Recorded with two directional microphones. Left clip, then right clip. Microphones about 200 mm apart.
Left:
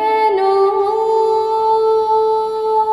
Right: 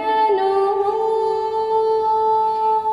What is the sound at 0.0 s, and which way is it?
Music, 25° left (ahead or behind).